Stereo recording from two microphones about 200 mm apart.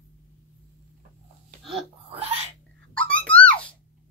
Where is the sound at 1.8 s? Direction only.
25° right (ahead or behind).